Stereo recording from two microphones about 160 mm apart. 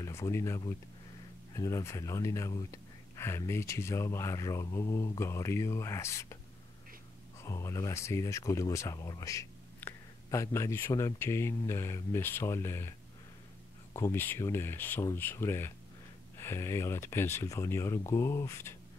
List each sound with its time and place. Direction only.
0.0 s speech: 20° left (ahead or behind)
7.3 s speech: 15° left (ahead or behind)
13.9 s speech: 15° left (ahead or behind)